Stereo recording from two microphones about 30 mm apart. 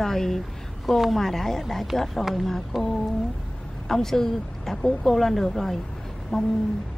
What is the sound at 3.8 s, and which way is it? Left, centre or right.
Speech, centre.